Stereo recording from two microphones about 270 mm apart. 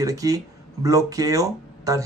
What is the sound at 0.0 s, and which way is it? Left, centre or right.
Speech, centre.